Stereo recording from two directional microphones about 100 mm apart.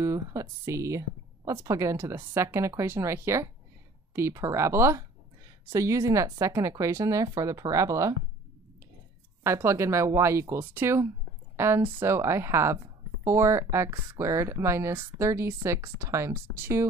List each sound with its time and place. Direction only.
0.0 s speech: 30° right (ahead or behind)
9.4 s speech: 25° right (ahead or behind)